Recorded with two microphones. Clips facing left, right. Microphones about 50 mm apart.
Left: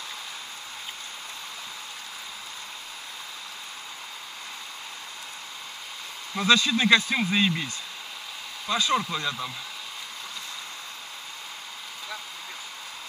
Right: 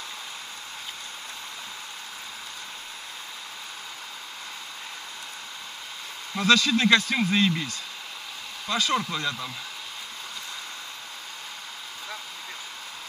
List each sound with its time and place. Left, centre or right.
6.3 s speech: centre